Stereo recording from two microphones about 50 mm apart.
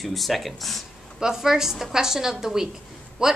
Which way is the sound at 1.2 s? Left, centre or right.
Centre.